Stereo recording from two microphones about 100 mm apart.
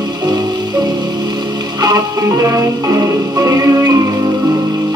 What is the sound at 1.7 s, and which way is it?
Music, 40° right (ahead or behind).